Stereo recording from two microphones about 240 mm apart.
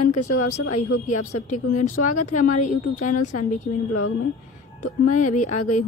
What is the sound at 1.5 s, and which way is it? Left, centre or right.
Speech, left.